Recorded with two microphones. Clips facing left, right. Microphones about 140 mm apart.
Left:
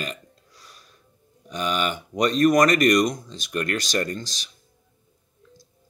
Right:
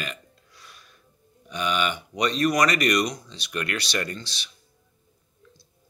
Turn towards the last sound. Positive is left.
turn(degrees=40)  # may be behind; listen again after turning